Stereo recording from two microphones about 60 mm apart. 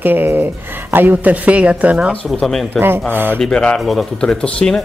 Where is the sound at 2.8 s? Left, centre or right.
Right.